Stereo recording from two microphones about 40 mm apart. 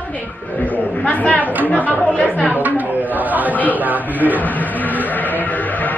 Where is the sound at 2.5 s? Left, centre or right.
Right.